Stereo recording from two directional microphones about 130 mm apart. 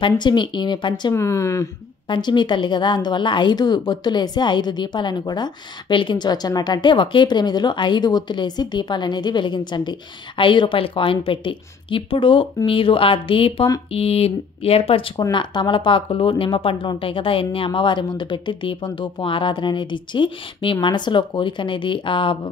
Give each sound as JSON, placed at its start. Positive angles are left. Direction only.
{"t": 0.0, "sound": "speech", "side_deg": 35}
{"t": 1.1, "sound": "speech", "side_deg": 20}
{"t": 2.0, "sound": "speech", "side_deg": 35}